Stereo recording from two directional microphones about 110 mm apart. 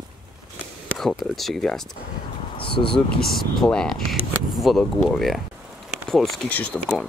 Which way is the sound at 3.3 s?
5° left (ahead or behind).